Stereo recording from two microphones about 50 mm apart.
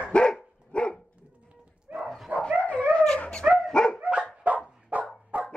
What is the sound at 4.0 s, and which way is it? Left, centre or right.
Dog, right.